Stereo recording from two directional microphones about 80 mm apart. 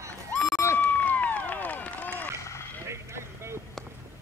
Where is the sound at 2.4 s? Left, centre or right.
Left.